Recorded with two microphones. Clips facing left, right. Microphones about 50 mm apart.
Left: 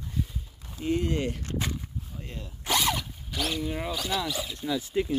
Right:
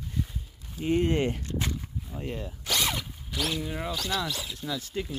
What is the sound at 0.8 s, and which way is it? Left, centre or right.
Speech, right.